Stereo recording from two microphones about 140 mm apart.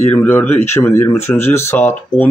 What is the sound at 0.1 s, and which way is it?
Speech, 10° left (ahead or behind).